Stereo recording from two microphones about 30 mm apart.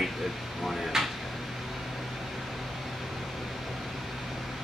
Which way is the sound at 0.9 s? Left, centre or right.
Centre.